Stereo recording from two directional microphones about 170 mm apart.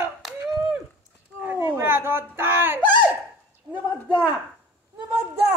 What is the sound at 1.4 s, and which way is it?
Cat, 10° right (ahead or behind).